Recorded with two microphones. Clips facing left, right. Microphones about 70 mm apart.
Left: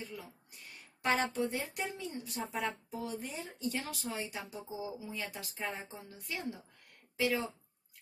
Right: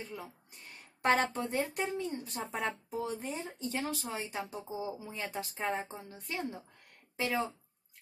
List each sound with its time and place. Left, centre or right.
1.0 s a woman's voice: right